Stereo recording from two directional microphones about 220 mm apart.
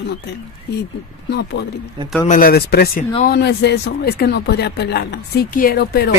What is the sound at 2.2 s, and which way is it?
Speech, 40° left (ahead or behind).